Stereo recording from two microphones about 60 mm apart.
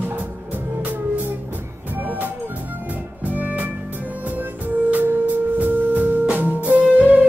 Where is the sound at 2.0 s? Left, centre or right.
Right.